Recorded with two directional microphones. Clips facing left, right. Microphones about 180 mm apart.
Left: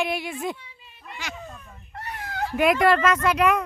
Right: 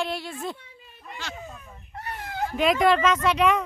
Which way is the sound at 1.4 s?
5° right (ahead or behind).